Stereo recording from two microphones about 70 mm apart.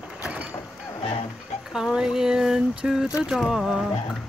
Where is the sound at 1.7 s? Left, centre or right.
Centre.